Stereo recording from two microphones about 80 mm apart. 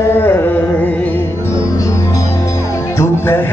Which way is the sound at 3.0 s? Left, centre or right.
Left.